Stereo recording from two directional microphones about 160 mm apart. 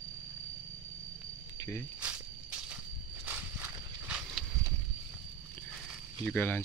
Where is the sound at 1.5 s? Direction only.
20° left (ahead or behind).